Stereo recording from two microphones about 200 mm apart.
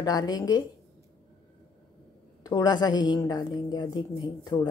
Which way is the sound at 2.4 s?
20° left (ahead or behind).